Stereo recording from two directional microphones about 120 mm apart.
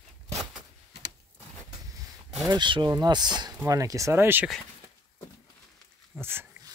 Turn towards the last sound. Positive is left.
turn(degrees=-20)  # may be behind; listen again after turning